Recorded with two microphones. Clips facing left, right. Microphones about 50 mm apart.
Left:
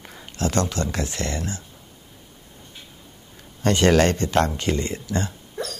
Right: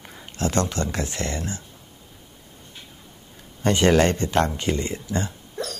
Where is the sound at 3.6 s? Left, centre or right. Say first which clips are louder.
Left 1 dB; right.